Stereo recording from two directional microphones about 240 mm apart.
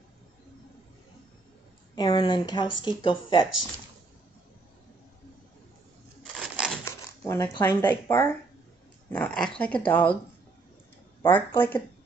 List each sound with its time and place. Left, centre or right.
2.0 s speech: centre
6.4 s a sound: centre
6.8 s speech: centre
11.2 s speech: centre